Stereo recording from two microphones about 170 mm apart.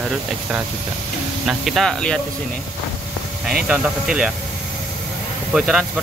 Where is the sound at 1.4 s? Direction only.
Centre (ahead or behind).